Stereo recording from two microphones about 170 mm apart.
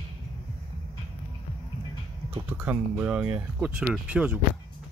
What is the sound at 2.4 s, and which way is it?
Speech, 10° right (ahead or behind).